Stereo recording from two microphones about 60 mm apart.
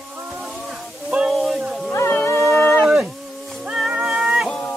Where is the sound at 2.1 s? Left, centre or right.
Left.